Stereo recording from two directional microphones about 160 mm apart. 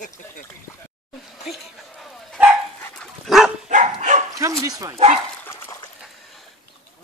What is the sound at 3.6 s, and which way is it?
Dog, 50° right (ahead or behind).